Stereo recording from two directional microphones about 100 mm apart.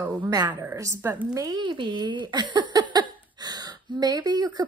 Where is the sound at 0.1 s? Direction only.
40° right (ahead or behind).